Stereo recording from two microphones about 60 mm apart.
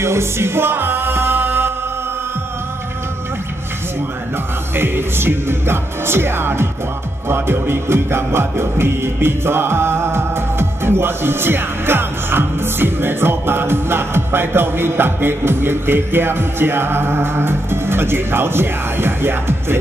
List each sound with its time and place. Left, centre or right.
0.0 s music: right
4.7 s music: right